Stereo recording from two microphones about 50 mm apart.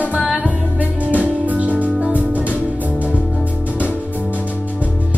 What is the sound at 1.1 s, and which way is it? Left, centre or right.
Music, right.